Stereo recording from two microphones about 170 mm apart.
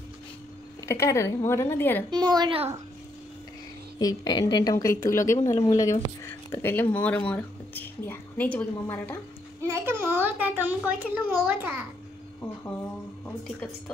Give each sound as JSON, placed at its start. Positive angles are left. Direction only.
{"t": 0.8, "sound": "speech", "side_deg": 15}
{"t": 2.0, "sound": "a woman's voice", "side_deg": -25}
{"t": 4.0, "sound": "a woman's voice", "side_deg": 20}
{"t": 9.6, "sound": "a child's voice", "side_deg": -15}